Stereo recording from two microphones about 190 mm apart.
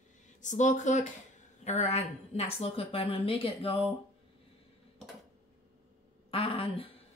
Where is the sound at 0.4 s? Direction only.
40° left (ahead or behind).